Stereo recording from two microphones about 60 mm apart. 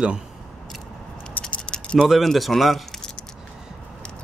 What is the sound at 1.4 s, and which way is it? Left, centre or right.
Rattle, left.